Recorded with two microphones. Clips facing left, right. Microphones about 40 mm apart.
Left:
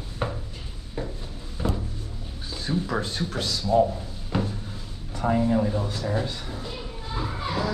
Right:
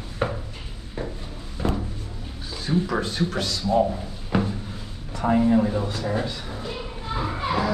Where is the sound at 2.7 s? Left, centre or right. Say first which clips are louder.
Right 4 dB; right.